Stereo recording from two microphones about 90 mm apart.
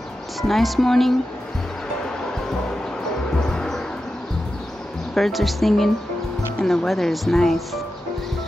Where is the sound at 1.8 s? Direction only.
5° left (ahead or behind).